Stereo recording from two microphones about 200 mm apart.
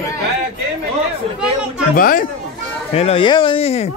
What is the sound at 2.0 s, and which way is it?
Speech, 45° left (ahead or behind).